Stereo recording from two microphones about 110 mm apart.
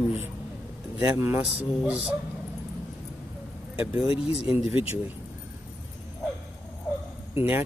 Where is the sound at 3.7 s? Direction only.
10° right (ahead or behind).